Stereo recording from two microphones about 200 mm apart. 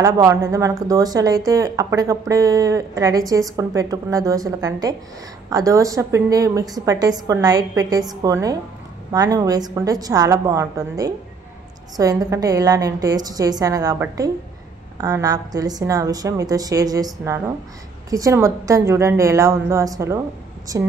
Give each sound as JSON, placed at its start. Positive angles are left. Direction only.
{"t": 0.0, "sound": "speech", "side_deg": -15}